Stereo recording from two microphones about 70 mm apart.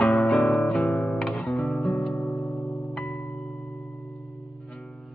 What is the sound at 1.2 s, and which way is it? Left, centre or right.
Music, centre.